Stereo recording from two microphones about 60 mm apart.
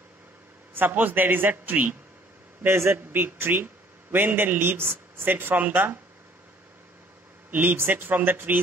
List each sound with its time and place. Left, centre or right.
0.7 s speech: right
2.6 s a man's voice: right
7.5 s speech: right